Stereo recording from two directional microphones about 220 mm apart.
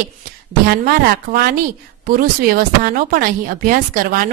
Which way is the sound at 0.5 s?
45° right (ahead or behind).